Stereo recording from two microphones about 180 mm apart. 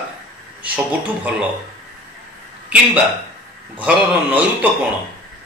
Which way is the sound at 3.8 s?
10° right (ahead or behind).